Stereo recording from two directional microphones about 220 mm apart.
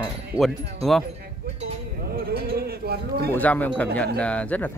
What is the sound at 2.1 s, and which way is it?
Sheep, 45° right (ahead or behind).